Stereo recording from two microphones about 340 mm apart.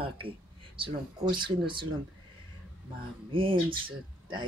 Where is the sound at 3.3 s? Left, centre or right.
Centre.